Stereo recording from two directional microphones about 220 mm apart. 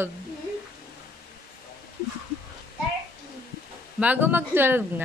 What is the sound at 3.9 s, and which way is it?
Speech, 5° right (ahead or behind).